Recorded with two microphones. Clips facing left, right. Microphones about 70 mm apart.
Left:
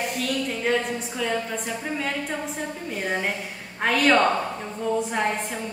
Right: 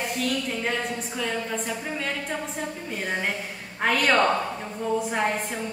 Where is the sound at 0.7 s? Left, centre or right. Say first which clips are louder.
Left 4 dB; centre.